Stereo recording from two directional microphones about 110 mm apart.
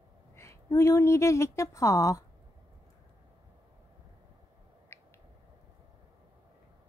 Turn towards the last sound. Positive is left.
turn(degrees=25)  # may be behind; listen again after turning